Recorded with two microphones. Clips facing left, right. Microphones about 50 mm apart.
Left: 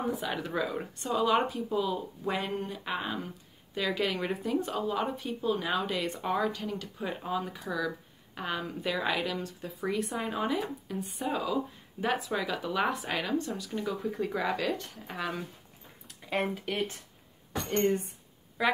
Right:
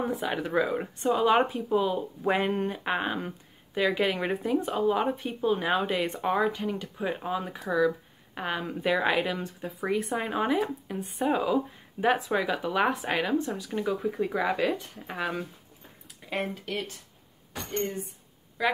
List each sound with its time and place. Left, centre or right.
0.2 s speech: centre; by 3.3 s right
3.7 s speech: right
16.3 s speech: centre
17.6 s speech: left